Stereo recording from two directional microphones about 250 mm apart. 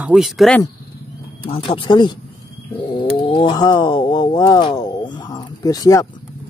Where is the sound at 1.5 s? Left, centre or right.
Left.